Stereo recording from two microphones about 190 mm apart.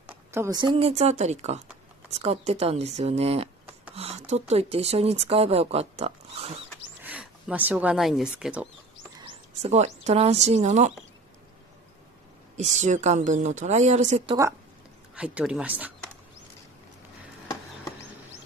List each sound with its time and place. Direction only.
0.3 s speech: 15° right (ahead or behind)
7.0 s speech: 5° right (ahead or behind)
9.2 s speech: 35° right (ahead or behind)
12.5 s speech: 40° right (ahead or behind)
15.1 s speech: 5° right (ahead or behind)